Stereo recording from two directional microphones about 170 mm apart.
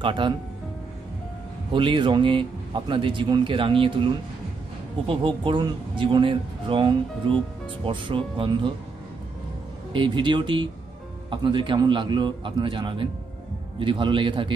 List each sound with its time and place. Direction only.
0.0 s speech: 30° right (ahead or behind)
1.7 s speech: 30° right (ahead or behind)
9.9 s speech: 30° right (ahead or behind)